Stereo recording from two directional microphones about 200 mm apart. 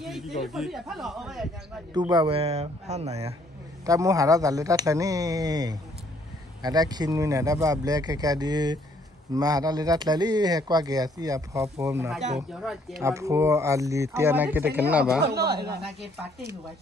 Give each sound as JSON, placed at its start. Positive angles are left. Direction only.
{"t": 0.0, "sound": "speech", "side_deg": 0}
{"t": 2.0, "sound": "speech", "side_deg": -20}
{"t": 3.8, "sound": "speech", "side_deg": -15}
{"t": 12.4, "sound": "speech", "side_deg": 0}
{"t": 13.0, "sound": "speech", "side_deg": -15}
{"t": 15.1, "sound": "speech", "side_deg": -55}